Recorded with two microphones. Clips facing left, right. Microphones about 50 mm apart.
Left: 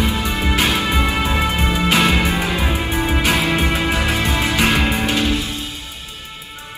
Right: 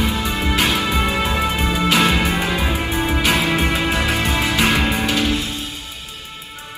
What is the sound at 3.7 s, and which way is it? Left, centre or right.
Music, left.